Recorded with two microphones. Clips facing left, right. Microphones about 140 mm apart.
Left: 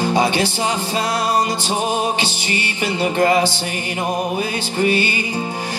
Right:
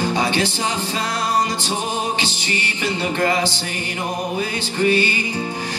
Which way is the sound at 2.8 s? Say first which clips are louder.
Left 4 dB; 15° left (ahead or behind).